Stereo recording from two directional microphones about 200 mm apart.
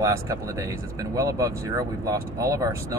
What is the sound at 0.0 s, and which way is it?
Speech, 15° right (ahead or behind).